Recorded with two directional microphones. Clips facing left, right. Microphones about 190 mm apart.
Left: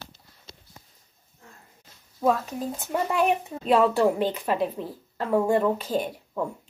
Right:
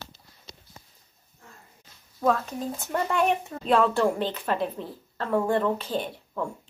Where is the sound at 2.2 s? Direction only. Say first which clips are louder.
Left 1 dB; 20° left (ahead or behind).